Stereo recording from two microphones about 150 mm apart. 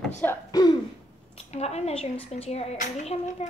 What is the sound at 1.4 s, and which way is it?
A woman's voice, 45° left (ahead or behind).